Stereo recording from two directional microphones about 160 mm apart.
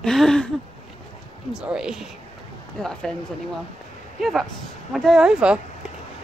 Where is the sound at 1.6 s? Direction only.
5° right (ahead or behind).